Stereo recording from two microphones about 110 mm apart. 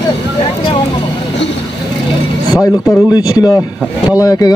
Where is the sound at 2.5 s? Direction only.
30° left (ahead or behind).